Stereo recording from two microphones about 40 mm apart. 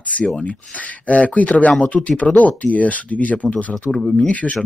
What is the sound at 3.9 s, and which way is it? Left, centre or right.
Speech, centre.